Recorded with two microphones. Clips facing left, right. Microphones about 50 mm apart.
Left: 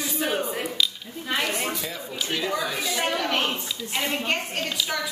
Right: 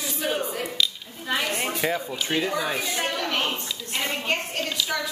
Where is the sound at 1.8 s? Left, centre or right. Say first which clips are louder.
Right 6 dB; right.